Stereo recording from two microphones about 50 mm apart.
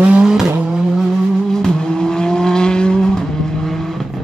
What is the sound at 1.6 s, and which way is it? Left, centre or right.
Vehicle, centre.